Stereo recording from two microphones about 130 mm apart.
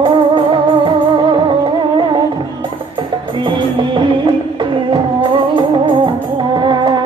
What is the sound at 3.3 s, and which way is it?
Music, 40° right (ahead or behind).